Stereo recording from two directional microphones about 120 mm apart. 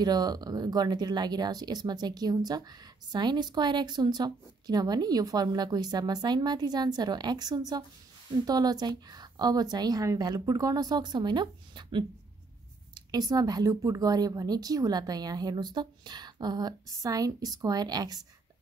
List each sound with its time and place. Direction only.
0.0 s speech: 35° right (ahead or behind)